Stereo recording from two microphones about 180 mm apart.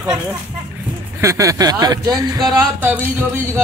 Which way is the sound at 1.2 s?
20° right (ahead or behind).